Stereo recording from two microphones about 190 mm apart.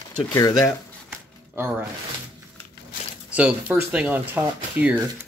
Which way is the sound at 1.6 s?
10° right (ahead or behind).